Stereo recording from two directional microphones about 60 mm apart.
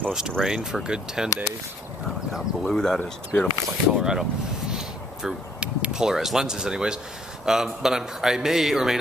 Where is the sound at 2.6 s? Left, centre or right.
Centre.